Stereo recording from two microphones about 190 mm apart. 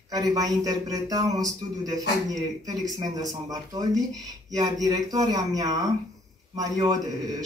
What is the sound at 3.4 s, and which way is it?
Speech, 20° right (ahead or behind).